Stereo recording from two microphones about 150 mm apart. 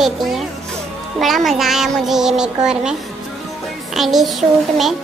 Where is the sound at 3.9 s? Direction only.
Centre (ahead or behind).